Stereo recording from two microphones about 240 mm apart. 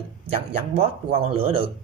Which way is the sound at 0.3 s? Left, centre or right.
Right.